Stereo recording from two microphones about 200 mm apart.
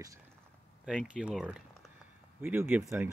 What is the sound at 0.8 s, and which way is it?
Speech, 5° right (ahead or behind).